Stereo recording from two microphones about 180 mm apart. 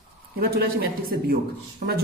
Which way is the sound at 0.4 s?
60° right (ahead or behind).